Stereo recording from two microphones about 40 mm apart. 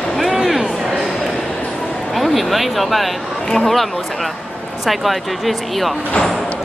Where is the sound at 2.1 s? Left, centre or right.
Centre.